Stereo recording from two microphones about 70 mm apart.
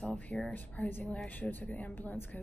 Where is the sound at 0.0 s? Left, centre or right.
Centre.